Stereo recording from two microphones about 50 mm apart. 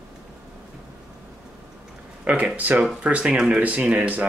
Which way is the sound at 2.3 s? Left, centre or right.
Right.